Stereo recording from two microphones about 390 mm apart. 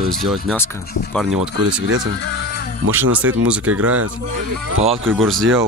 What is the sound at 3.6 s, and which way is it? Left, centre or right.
Speech, right.